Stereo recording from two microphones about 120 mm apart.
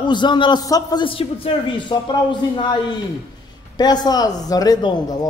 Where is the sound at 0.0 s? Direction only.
40° left (ahead or behind).